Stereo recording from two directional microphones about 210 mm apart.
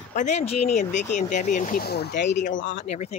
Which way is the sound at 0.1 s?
35° left (ahead or behind).